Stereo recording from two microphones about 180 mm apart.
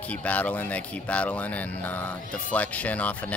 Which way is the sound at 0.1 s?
10° left (ahead or behind).